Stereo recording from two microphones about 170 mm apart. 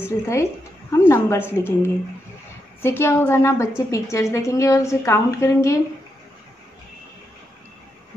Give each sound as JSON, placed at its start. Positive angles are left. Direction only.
{"t": 0.0, "sound": "a woman's voice", "side_deg": 15}